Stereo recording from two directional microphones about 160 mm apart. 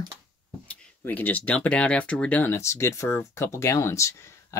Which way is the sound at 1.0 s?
10° left (ahead or behind).